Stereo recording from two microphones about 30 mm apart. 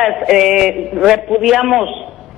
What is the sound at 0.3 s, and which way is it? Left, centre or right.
A man's voice, centre.